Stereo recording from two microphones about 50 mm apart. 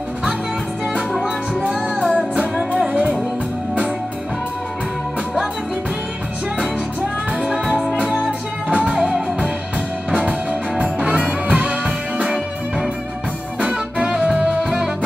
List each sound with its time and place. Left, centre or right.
1.7 s music: centre
7.0 s music: centre
8.9 s music: centre
10.8 s music: centre
11.8 s music: centre